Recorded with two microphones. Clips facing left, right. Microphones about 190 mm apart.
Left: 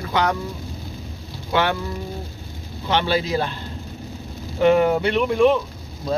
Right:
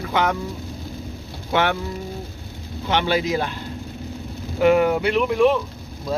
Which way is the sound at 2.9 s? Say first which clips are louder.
Even; 15° right (ahead or behind).